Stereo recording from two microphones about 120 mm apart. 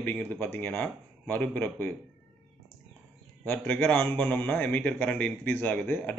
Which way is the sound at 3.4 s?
15° left (ahead or behind).